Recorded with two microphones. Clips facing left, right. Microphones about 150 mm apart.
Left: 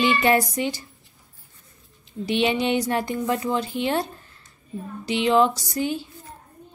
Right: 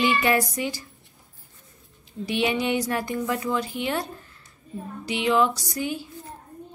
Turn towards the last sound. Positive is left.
turn(degrees=25)  # may be behind; listen again after turning